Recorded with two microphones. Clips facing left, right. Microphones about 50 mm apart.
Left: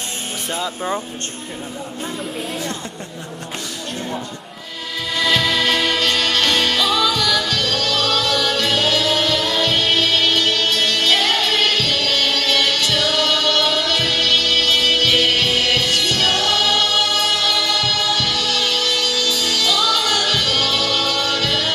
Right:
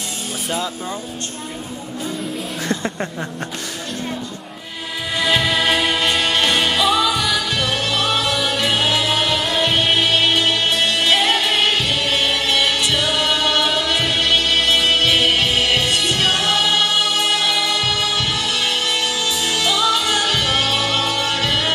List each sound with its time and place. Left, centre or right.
5.1 s music: centre